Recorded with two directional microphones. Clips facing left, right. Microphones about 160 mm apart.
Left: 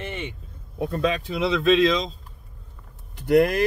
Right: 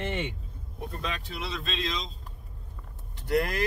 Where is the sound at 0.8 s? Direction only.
75° left (ahead or behind).